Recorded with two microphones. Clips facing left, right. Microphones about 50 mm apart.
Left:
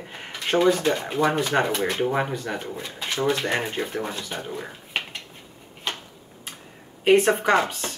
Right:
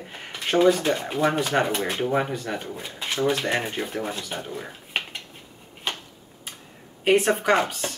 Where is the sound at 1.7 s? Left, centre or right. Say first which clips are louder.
Left 2 dB; right.